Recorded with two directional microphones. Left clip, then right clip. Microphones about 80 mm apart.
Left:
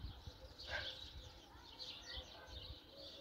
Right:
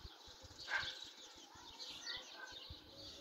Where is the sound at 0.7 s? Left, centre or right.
Left.